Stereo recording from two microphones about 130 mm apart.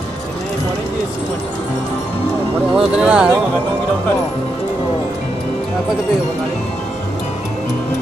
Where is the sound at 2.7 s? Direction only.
10° right (ahead or behind).